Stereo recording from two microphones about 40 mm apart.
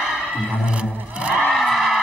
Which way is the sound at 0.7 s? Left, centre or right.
Right.